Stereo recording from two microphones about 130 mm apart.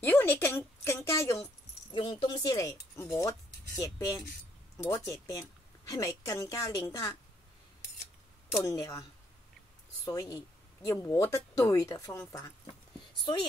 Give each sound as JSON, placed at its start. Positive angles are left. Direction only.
{"t": 0.0, "sound": "a sound", "side_deg": 15}
{"t": 1.9, "sound": "speech", "side_deg": 35}
{"t": 8.5, "sound": "speech", "side_deg": 25}
{"t": 10.3, "sound": "speech", "side_deg": 25}
{"t": 13.2, "sound": "speech", "side_deg": 35}